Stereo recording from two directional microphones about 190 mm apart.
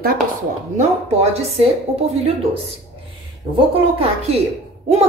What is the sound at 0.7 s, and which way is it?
A woman's voice, 35° right (ahead or behind).